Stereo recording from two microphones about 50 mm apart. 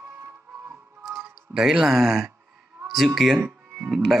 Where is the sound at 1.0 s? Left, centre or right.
Centre.